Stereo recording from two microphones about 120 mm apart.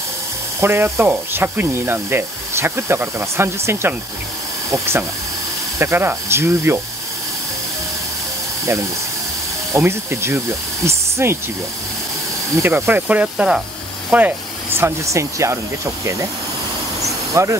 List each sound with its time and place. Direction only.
0.6 s speech: 20° right (ahead or behind)
9.7 s speech: 20° right (ahead or behind)
12.5 s speech: 20° right (ahead or behind)
17.0 s a sound: 25° right (ahead or behind)